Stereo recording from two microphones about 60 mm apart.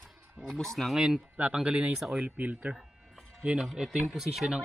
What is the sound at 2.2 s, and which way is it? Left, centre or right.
Speech, right.